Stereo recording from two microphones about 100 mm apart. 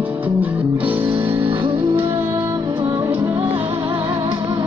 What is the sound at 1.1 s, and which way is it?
Music, 70° right (ahead or behind).